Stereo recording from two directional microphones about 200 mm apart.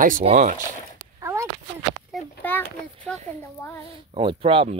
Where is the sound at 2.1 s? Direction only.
5° left (ahead or behind).